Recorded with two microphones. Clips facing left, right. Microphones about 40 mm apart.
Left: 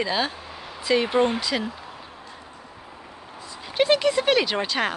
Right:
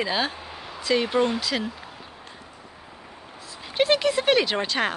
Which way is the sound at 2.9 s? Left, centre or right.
Centre.